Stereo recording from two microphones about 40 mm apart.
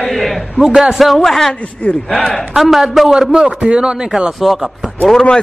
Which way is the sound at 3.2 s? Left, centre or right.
Centre.